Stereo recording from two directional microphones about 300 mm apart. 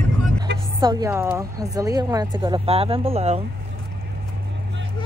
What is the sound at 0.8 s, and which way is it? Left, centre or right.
A woman's voice, centre.